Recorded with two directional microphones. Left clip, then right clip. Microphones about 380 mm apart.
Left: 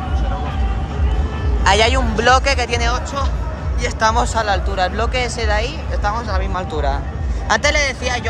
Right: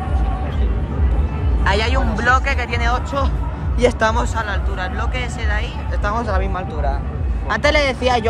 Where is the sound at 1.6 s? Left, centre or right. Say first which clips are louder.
Left 5 dB; centre.